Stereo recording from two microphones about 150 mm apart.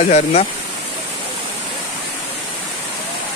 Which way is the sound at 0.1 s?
45° left (ahead or behind).